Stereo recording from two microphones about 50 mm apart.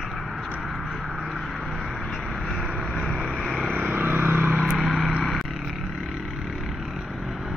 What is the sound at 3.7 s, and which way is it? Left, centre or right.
Vehicle, right.